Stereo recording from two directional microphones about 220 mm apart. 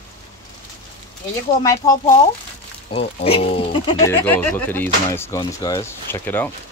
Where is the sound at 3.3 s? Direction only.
25° left (ahead or behind).